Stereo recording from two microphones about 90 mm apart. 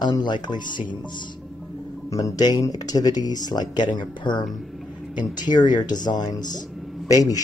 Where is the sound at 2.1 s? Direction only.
45° left (ahead or behind).